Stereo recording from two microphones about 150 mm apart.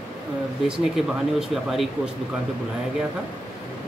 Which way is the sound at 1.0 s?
Centre (ahead or behind).